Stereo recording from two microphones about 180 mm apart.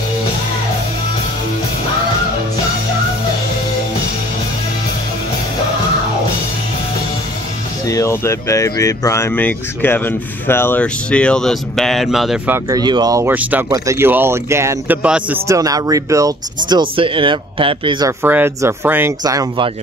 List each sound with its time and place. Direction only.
7.8 s speech: 15° left (ahead or behind); by 12.5 s centre (ahead or behind)
12.5 s speech: 20° right (ahead or behind)
15.4 s speech: 20° right (ahead or behind)
18.2 s speech: 10° right (ahead or behind)